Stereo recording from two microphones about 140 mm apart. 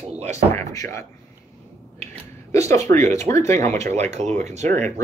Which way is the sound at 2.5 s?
20° left (ahead or behind).